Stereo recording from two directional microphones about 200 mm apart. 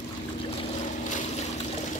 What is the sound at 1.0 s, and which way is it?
Boat, 40° left (ahead or behind).